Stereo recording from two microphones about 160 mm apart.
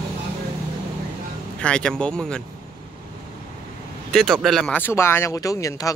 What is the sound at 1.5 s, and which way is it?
Speech, 5° left (ahead or behind).